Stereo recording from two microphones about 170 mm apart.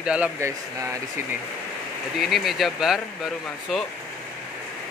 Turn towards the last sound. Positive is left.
turn(degrees=0)  # may be behind; listen again after turning